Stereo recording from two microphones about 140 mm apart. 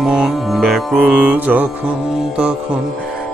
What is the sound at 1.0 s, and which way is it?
Music, 10° right (ahead or behind).